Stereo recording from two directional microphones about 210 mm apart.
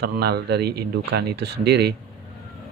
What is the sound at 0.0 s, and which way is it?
Speech, 50° right (ahead or behind).